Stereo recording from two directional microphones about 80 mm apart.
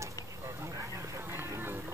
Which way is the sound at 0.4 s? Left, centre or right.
Right.